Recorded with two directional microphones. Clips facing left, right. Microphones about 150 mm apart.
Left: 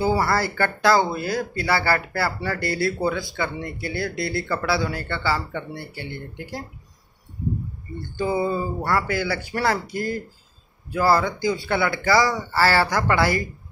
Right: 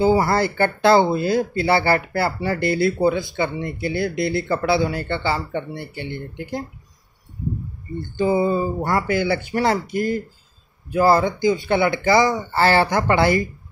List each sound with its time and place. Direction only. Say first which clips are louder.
0.0 s speech: right 4 dB; 20° right (ahead or behind)
8.2 s speech: right 4 dB; 20° right (ahead or behind)